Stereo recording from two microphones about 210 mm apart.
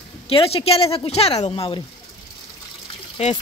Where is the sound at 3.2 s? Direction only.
30° left (ahead or behind).